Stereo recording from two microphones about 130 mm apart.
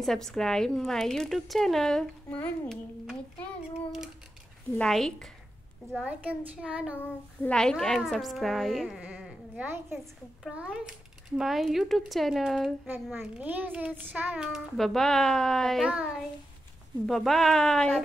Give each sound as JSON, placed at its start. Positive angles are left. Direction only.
{"t": 0.0, "sound": "a woman's voice", "side_deg": 5}
{"t": 4.7, "sound": "a woman's voice", "side_deg": 5}
{"t": 6.0, "sound": "a child's voice", "side_deg": -10}
{"t": 7.4, "sound": "a woman's voice", "side_deg": 5}
{"t": 9.0, "sound": "a sound", "side_deg": -10}
{"t": 10.5, "sound": "a woman's voice", "side_deg": -5}
{"t": 12.8, "sound": "a child's voice", "side_deg": -15}
{"t": 17.0, "sound": "a woman's voice", "side_deg": 0}